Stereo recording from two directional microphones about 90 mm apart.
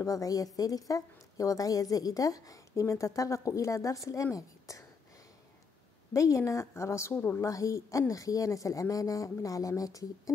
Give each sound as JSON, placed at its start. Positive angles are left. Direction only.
{"t": 0.0, "sound": "a woman's voice", "side_deg": 40}
{"t": 6.1, "sound": "a woman's voice", "side_deg": 35}
{"t": 7.2, "sound": "a woman's voice", "side_deg": 20}
{"t": 7.4, "sound": "a woman's voice", "side_deg": 35}